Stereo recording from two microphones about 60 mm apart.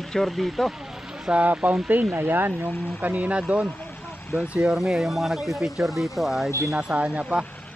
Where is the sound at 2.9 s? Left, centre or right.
Right.